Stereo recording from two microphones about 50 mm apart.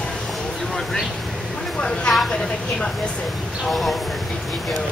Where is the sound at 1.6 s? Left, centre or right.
Centre.